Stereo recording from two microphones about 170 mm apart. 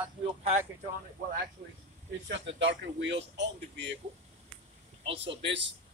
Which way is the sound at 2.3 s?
90° right.